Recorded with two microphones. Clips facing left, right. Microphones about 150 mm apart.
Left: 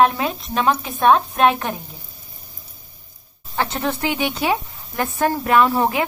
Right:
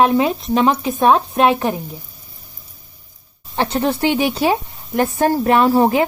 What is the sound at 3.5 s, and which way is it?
A woman's voice, 30° right (ahead or behind).